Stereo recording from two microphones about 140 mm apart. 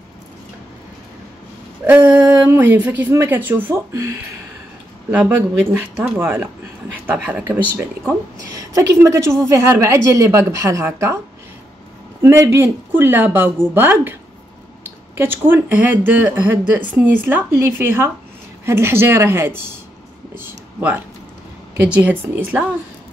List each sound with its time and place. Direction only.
1.9 s speech: 10° right (ahead or behind)
5.7 s speech: 15° right (ahead or behind)
8.4 s a woman's voice: 25° right (ahead or behind)
12.2 s speech: 20° right (ahead or behind)
15.1 s speech: 15° right (ahead or behind)